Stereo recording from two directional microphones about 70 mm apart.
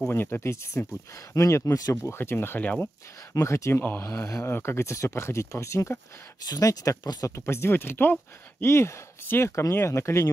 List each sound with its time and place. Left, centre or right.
0.1 s speech: left
2.0 s speech: left
3.3 s speech: left
3.8 s speech: left
6.4 s speech: left
7.0 s speech: left
7.2 s speech: left